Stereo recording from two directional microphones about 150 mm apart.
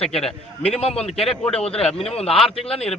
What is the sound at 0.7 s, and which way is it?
Speech, 40° left (ahead or behind).